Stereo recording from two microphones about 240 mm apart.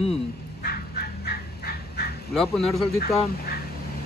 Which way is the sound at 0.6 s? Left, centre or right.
Left.